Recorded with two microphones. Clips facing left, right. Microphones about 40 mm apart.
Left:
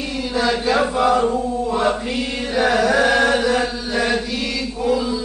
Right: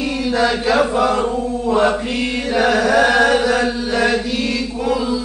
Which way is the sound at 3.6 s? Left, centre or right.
Right.